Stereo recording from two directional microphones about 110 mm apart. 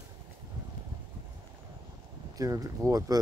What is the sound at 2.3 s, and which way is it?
Speech, 35° right (ahead or behind).